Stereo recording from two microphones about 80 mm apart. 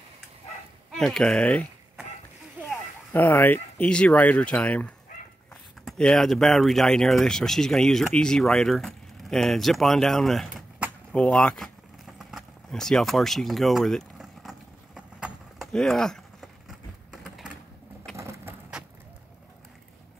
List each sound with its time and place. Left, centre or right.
0.9 s speech: centre
3.1 s speech: left
5.9 s speech: centre
12.1 s vehicle: centre
12.7 s speech: centre
14.1 s vehicle: centre
15.7 s a sound: centre
16.6 s a sound: centre
18.1 s vehicle: right